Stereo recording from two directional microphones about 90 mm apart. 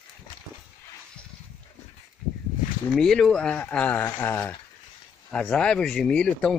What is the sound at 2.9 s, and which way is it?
Speech, 5° left (ahead or behind).